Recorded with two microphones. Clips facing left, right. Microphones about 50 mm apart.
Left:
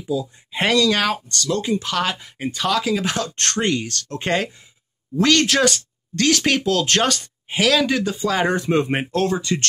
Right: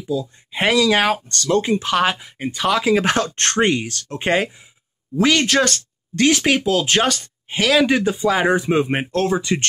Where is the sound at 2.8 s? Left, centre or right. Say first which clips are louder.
Right 5 dB; right; by 5.8 s centre.